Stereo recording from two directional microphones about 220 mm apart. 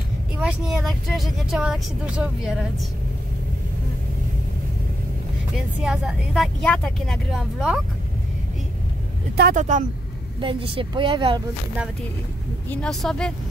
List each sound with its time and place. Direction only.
0.4 s speech: 5° right (ahead or behind)
5.9 s speech: centre (ahead or behind)
9.4 s speech: 35° right (ahead or behind)
10.4 s a woman's voice: 25° right (ahead or behind)
12.6 s speech: 5° left (ahead or behind)